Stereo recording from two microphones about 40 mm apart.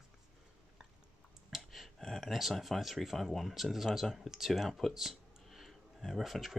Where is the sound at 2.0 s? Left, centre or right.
Centre.